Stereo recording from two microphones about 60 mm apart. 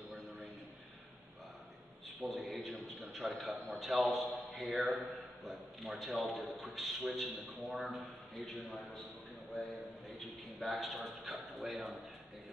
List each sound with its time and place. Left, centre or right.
2.2 s a man's voice: centre
9.6 s a man's voice: centre